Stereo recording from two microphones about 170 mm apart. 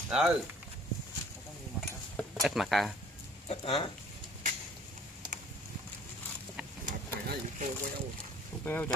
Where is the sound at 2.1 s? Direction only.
Centre (ahead or behind).